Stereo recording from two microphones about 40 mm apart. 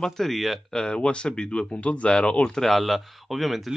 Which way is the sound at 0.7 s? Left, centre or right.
Left.